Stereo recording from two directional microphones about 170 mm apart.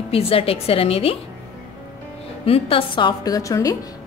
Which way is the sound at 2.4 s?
35° left (ahead or behind).